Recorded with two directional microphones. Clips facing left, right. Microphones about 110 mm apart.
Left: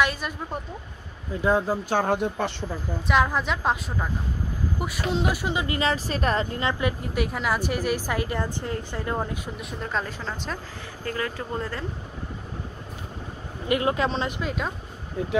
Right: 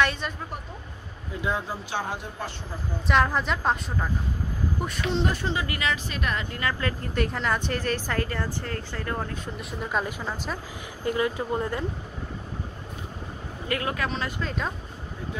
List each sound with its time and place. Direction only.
0.0 s a woman's voice: 5° left (ahead or behind)
1.4 s speech: 40° left (ahead or behind); by 2.5 s 65° left (ahead or behind)
3.1 s a woman's voice: centre (ahead or behind); by 5.8 s 20° left (ahead or behind)
5.8 s a woman's voice: 35° left (ahead or behind); by 9.4 s 15° left (ahead or behind)
9.6 s a woman's voice: 5° right (ahead or behind)
13.7 s speech: 20° left (ahead or behind)
14.4 s a woman's voice: 5° left (ahead or behind)